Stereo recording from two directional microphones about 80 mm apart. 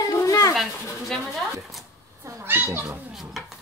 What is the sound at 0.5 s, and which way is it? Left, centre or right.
Speech, centre.